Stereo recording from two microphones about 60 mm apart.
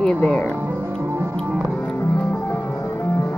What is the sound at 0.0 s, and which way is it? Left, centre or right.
Speech, centre.